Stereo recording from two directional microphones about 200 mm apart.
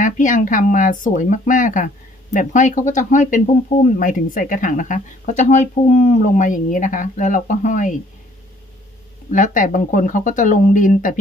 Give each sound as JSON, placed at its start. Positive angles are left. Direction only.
{"t": 0.0, "sound": "speech", "side_deg": 40}
{"t": 9.3, "sound": "speech", "side_deg": 40}